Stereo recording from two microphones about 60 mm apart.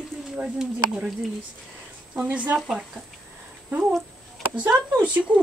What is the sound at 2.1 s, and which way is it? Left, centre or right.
Speech, right.